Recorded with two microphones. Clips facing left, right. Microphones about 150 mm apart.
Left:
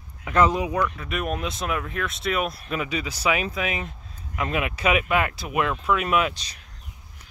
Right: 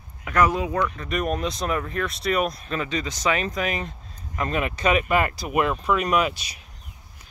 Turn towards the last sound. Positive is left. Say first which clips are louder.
# right 3 dB
turn(degrees=-10)  # may be behind; listen again after turning